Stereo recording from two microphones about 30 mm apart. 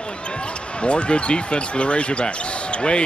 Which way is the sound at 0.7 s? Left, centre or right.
Left.